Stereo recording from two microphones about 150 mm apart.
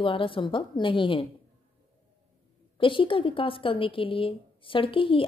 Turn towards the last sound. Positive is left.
turn(degrees=35)  # may be behind; listen again after turning